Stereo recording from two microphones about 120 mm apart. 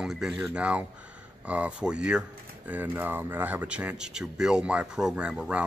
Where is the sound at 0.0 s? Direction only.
5° right (ahead or behind).